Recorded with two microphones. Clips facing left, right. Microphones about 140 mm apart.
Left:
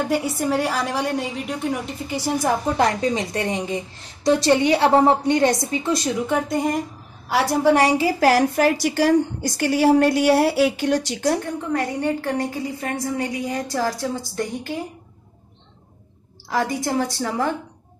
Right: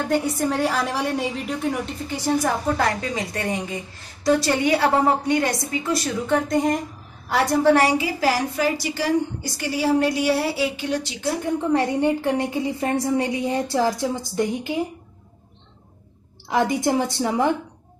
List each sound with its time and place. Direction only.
0.1 s a woman's voice: 5° left (ahead or behind); by 6.0 s 20° left (ahead or behind)
6.2 s a woman's voice: 5° left (ahead or behind)
8.0 s a woman's voice: 55° left (ahead or behind)
11.7 s a woman's voice: 20° right (ahead or behind)
16.4 s a woman's voice: 20° right (ahead or behind)